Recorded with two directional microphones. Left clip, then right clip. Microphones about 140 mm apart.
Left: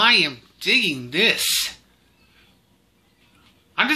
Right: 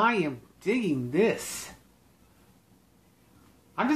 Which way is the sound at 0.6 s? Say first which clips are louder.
Left 9 dB; 5° right (ahead or behind).